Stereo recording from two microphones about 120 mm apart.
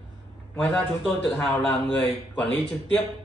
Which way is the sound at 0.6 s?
5° left (ahead or behind).